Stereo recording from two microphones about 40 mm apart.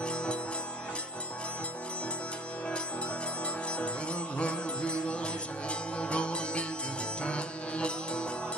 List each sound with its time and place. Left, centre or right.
0.0 s music: left
3.7 s music: left